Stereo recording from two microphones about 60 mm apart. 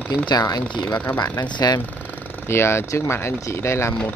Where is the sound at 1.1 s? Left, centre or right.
Left.